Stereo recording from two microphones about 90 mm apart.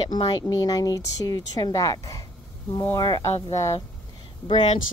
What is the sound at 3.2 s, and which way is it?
Speech, 35° left (ahead or behind).